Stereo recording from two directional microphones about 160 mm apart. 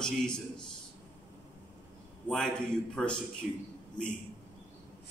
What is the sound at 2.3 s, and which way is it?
Speech, 5° left (ahead or behind).